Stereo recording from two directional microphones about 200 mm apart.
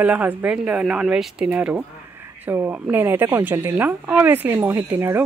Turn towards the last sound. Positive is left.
turn(degrees=-10)  # may be behind; listen again after turning